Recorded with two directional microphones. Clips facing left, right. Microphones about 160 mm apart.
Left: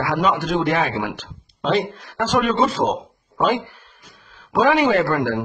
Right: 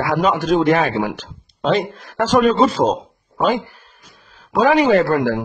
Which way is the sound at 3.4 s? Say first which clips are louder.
Right 2 dB; 40° right (ahead or behind).